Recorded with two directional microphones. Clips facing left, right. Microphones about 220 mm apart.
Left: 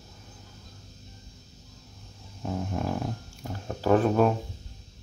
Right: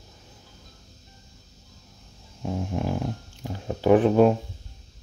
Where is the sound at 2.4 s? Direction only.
10° right (ahead or behind).